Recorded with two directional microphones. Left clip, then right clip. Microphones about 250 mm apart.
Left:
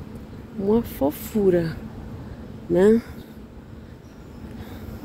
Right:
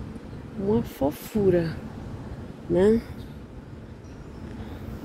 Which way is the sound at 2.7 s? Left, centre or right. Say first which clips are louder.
Left 3 dB; centre.